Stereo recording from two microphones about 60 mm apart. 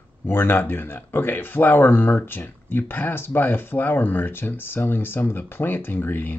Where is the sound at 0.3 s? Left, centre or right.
Left.